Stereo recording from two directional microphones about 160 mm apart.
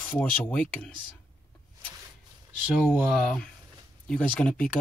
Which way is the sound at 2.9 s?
Centre (ahead or behind).